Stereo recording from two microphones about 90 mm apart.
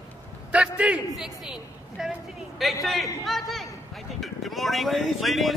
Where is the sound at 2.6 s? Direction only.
Centre (ahead or behind).